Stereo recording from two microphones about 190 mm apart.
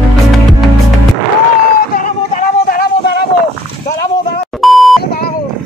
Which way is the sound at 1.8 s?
50° left (ahead or behind).